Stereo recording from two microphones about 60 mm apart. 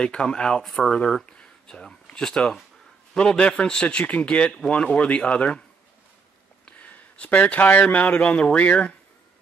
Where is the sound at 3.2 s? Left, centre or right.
Centre.